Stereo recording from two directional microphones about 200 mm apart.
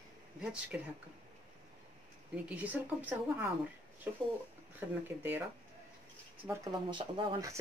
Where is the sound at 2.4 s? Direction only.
5° right (ahead or behind).